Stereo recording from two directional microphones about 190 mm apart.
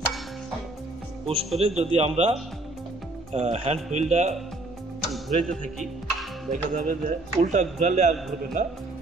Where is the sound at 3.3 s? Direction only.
35° right (ahead or behind).